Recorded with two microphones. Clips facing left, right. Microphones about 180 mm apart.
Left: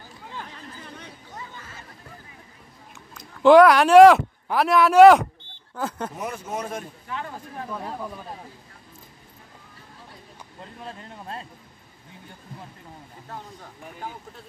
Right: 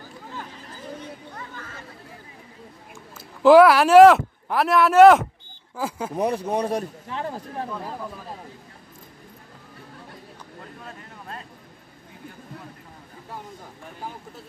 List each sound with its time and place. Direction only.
3.2 s speech: 5° right (ahead or behind)
6.1 s a man's voice: 35° right (ahead or behind)
7.7 s speech: 5° left (ahead or behind)
10.8 s a sound: 30° left (ahead or behind)